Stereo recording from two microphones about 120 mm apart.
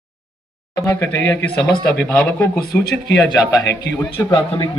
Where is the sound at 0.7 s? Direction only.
20° left (ahead or behind).